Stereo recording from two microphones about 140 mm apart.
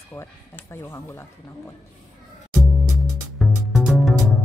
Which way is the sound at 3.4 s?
Centre (ahead or behind).